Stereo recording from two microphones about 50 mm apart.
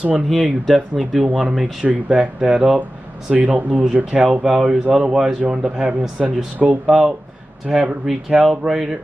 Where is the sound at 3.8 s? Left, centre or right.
Centre.